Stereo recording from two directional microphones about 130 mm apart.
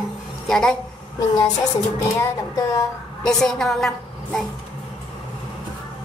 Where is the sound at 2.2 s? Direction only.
25° left (ahead or behind).